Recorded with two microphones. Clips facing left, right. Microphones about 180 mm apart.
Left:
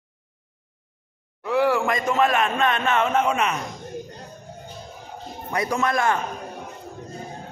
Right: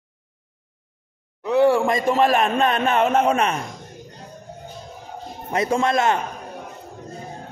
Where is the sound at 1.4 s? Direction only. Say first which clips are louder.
Right 4 dB; 25° right (ahead or behind).